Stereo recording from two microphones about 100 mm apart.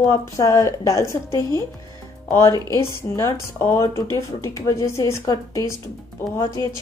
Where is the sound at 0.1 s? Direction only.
30° left (ahead or behind).